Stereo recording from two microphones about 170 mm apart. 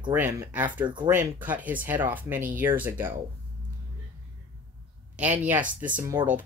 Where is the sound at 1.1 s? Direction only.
10° right (ahead or behind).